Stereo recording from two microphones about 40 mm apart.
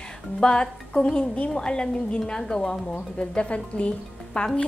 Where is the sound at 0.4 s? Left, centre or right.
Left.